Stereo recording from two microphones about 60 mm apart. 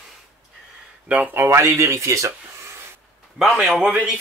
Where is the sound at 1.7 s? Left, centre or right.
Right.